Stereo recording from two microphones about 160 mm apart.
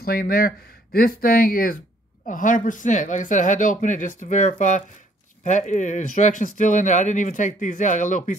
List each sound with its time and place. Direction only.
0.0 s speech: 70° left (ahead or behind); by 8.4 s 50° left (ahead or behind)